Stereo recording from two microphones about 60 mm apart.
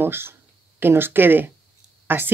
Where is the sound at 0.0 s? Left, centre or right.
Right.